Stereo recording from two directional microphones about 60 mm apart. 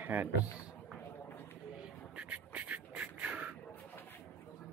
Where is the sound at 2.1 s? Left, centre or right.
Right.